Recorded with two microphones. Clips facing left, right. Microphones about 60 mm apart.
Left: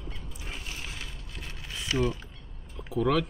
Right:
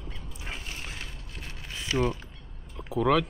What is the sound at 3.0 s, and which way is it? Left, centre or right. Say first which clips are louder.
Speech: right 2 dB; right.